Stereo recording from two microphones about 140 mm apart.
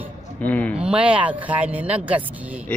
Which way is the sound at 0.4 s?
10° left (ahead or behind).